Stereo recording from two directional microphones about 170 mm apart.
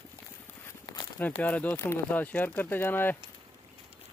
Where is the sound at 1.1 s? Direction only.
10° left (ahead or behind).